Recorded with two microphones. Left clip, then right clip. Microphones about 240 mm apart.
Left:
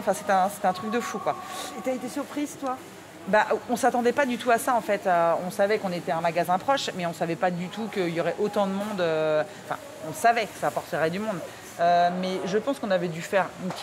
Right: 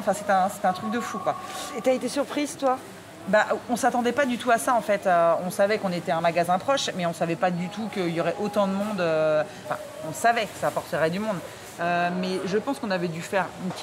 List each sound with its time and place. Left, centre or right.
0.0 s a woman's voice: centre
1.9 s speech: right
3.3 s speech: centre